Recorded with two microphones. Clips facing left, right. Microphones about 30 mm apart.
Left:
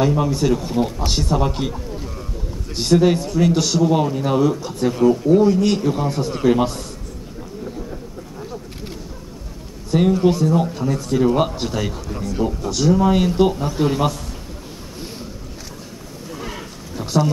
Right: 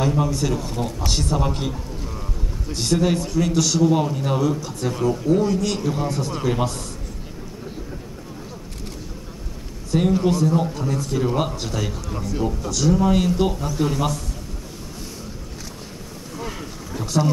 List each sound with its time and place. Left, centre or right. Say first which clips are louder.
0.0 s speech: left 3 dB; centre
2.8 s speech: left 5 dB; centre
9.8 s a sound: left 3 dB; centre
10.2 s speech: left 3 dB; centre
12.6 s speech: left 3 dB; centre
16.3 s a sound: even; centre